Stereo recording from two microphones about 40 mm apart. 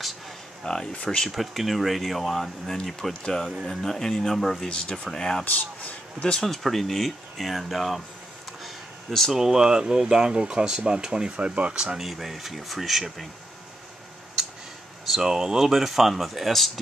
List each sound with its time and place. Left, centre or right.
0.7 s speech: left
1.3 s speech: centre
4.6 s speech: left
5.4 s a man's voice: left
6.4 s speech: centre
9.3 s speech: centre; by 11.8 s right
12.0 s speech: centre
15.0 s speech: centre